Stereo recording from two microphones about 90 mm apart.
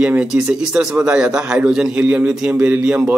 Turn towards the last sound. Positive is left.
turn(degrees=-10)  # may be behind; listen again after turning